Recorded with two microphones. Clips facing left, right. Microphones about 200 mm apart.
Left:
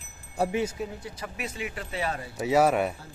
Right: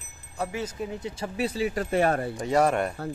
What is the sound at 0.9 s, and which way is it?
A man's voice, 25° right (ahead or behind).